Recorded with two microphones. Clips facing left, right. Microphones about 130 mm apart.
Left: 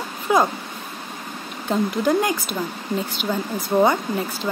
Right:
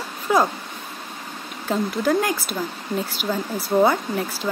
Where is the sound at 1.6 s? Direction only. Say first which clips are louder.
Left 1 dB; centre (ahead or behind).